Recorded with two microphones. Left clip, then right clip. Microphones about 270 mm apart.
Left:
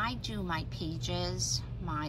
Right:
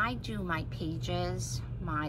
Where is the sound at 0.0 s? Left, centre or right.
Centre.